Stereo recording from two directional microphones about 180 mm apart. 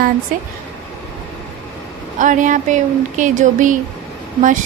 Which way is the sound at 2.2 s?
45° right (ahead or behind).